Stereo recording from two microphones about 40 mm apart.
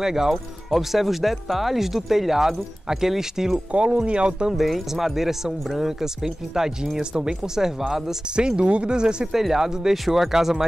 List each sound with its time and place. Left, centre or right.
0.0 s speech: centre
3.7 s speech: right
4.5 s speech: centre
8.4 s speech: right
9.3 s speech: centre